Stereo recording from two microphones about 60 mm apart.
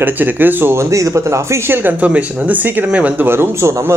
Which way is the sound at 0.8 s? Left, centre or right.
Right.